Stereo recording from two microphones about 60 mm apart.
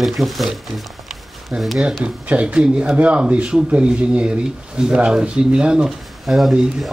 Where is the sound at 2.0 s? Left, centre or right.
Right.